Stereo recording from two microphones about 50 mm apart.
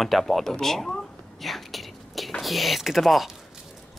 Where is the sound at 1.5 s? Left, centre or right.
Centre.